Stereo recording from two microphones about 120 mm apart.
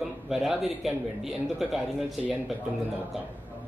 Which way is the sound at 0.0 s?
5° right (ahead or behind).